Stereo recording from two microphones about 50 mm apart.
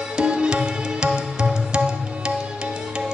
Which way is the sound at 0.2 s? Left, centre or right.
Centre.